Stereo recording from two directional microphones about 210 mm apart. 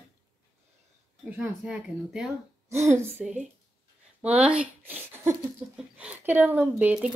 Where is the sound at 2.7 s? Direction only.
30° right (ahead or behind).